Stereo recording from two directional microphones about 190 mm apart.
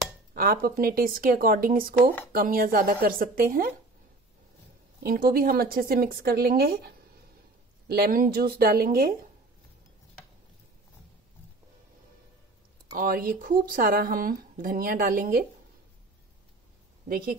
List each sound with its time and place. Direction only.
0.3 s speech: 50° right (ahead or behind)
5.0 s speech: 50° right (ahead or behind)
7.9 s speech: 50° right (ahead or behind)
12.9 s speech: 50° right (ahead or behind)
17.1 s speech: 50° right (ahead or behind)